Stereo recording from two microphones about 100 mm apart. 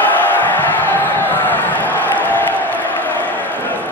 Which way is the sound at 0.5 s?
20° left (ahead or behind).